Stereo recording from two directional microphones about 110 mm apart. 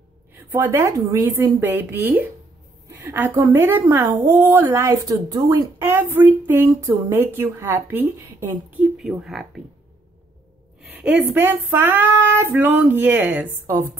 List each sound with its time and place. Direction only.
0.5 s female singing: 20° right (ahead or behind)
4.9 s a woman's voice: 30° right (ahead or behind)
5.8 s female singing: 20° right (ahead or behind)
8.9 s speech: 5° right (ahead or behind)
10.9 s female singing: 15° right (ahead or behind)
13.7 s female singing: 25° right (ahead or behind)